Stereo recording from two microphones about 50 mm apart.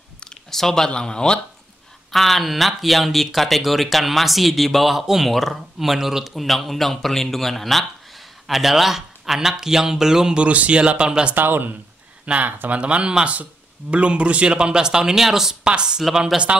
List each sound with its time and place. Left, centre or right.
0.2 s speech: centre
2.0 s speech: centre
10.3 s a man's voice: right
11.3 s speech: right
12.7 s a man's voice: right